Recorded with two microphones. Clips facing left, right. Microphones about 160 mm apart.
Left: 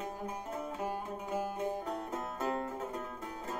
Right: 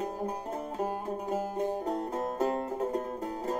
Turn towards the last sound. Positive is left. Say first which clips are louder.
# right 8 dB
turn(degrees=-35)  # may be behind; listen again after turning